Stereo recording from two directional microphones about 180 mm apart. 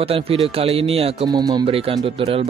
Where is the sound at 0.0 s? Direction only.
30° right (ahead or behind).